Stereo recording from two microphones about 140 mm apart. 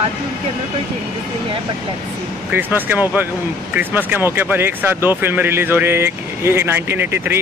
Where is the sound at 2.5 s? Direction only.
15° right (ahead or behind).